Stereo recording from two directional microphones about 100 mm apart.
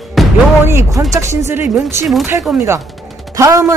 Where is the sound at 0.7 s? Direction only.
25° right (ahead or behind).